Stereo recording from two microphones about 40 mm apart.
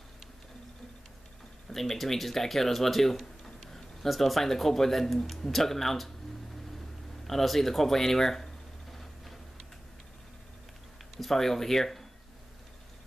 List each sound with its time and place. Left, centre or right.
1.7 s speech: centre
7.2 s speech: centre
8.9 s a sound: centre
11.1 s speech: centre